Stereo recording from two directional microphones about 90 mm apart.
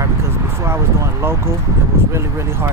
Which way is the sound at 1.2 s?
25° right (ahead or behind).